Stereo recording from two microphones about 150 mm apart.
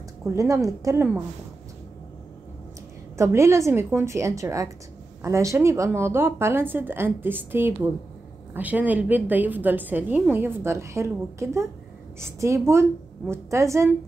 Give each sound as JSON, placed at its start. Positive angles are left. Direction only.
{"t": 0.3, "sound": "a woman's voice", "side_deg": -20}
{"t": 3.2, "sound": "a woman's voice", "side_deg": -20}